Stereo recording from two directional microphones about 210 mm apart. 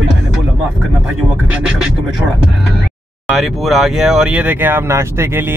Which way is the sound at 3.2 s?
Centre (ahead or behind).